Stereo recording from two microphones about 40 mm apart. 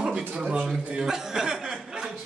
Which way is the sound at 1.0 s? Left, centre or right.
Centre.